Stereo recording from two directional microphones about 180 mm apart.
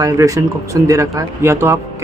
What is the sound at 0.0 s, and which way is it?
Speech, 20° right (ahead or behind).